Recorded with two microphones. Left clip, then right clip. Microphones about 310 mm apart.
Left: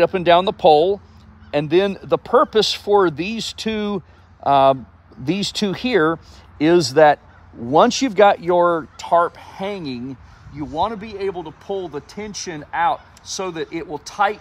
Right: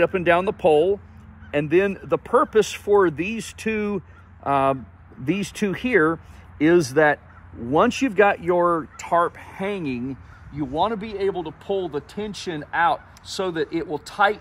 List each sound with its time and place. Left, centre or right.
0.0 s speech: left; by 14.4 s centre